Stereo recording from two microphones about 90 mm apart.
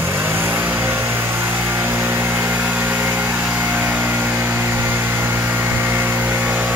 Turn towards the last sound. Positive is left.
turn(degrees=-15)  # may be behind; listen again after turning